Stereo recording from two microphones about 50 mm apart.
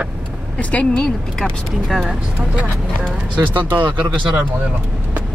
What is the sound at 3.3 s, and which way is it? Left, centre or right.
Speech, right.